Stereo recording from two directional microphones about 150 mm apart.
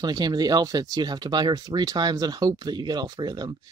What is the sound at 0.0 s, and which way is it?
Speech, 25° right (ahead or behind).